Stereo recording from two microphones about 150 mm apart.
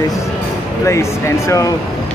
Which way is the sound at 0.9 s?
20° left (ahead or behind).